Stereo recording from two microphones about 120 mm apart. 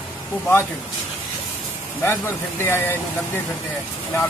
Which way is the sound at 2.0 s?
20° left (ahead or behind).